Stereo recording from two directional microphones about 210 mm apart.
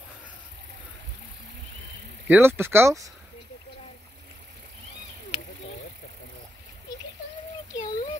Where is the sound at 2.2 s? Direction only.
10° right (ahead or behind).